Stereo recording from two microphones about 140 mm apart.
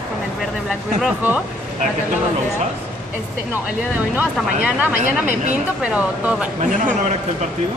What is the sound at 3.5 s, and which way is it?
Speech, 10° right (ahead or behind).